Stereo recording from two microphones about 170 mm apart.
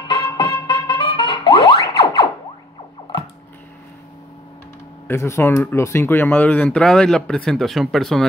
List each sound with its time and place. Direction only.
0.3 s music: 25° left (ahead or behind)
5.0 s speech: 15° left (ahead or behind)